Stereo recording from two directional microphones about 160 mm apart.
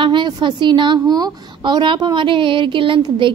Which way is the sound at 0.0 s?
30° right (ahead or behind).